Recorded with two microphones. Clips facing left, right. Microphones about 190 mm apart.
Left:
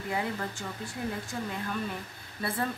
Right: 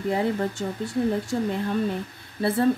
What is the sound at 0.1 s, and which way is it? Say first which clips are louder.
Speech: right 8 dB; 30° right (ahead or behind).